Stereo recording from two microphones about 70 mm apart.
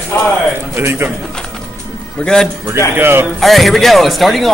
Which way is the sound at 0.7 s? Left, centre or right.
Right.